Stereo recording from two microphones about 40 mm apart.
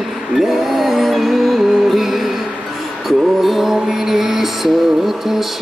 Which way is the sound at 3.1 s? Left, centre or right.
Centre.